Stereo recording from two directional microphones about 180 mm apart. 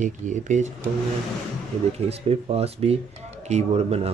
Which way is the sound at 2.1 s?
35° right (ahead or behind).